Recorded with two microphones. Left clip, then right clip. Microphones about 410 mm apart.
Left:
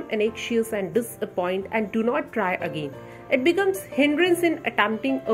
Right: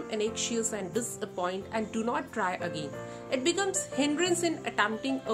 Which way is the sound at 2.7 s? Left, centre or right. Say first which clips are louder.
Left 4 dB; right.